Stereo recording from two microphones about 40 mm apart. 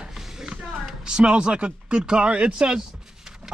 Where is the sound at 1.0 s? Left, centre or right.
Right.